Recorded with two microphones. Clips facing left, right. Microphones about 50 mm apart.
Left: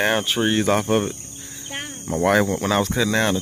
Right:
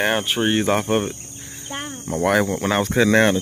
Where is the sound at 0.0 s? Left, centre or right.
Centre.